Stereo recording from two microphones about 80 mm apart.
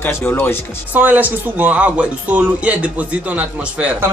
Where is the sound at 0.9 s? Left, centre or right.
Right.